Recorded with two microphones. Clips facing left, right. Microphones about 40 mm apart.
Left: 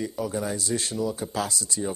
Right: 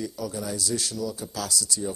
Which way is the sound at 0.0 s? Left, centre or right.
Left.